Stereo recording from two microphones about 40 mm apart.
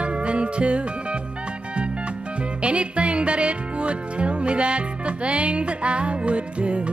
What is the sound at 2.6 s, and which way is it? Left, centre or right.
Music, right.